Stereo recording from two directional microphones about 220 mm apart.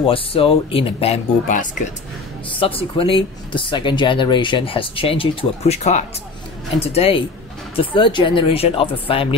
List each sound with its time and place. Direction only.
0.0 s speech: 25° left (ahead or behind)
2.6 s speech: 25° left (ahead or behind)